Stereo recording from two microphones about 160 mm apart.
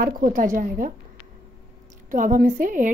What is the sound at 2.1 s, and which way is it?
Speech, 55° right (ahead or behind).